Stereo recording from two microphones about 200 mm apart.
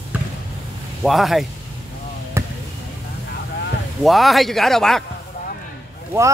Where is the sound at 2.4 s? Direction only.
15° right (ahead or behind).